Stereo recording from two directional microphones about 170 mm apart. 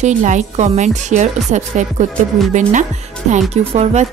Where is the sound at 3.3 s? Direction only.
40° right (ahead or behind).